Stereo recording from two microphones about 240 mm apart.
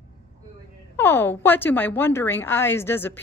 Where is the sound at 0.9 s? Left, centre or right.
Centre.